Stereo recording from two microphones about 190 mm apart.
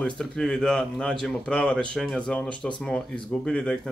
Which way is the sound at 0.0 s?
5° left (ahead or behind).